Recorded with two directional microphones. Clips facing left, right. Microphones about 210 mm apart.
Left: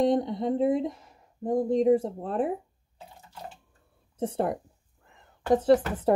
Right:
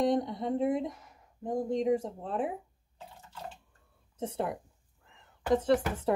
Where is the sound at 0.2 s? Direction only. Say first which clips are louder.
Left 5 dB; 25° left (ahead or behind).